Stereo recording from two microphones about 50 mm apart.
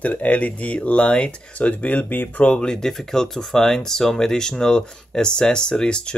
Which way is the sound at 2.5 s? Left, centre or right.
Centre.